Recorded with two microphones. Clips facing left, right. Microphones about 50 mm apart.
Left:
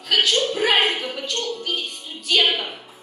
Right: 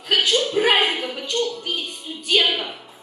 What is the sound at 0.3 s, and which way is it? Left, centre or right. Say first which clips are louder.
Speech: right 1 dB; centre.